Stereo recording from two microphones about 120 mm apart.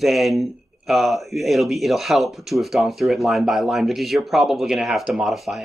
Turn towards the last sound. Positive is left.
turn(degrees=0)  # may be behind; listen again after turning